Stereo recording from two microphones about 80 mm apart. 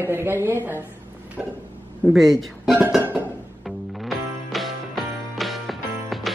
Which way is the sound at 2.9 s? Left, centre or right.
Right.